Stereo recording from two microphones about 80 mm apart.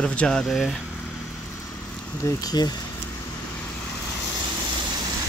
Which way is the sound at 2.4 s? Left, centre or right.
Left.